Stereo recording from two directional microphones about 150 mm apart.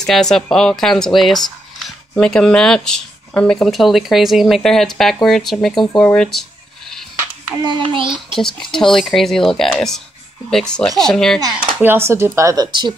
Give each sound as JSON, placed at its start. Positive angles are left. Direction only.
{"t": 0.0, "sound": "speech", "side_deg": 5}
{"t": 7.6, "sound": "child singing", "side_deg": -30}
{"t": 8.1, "sound": "speech", "side_deg": 0}
{"t": 11.5, "sound": "speech", "side_deg": -15}